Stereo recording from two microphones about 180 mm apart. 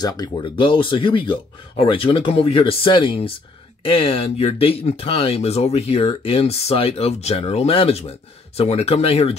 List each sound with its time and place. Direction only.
0.0 s speech: 25° left (ahead or behind)